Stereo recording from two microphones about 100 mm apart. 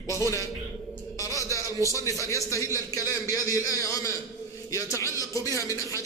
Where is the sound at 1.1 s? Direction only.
35° left (ahead or behind).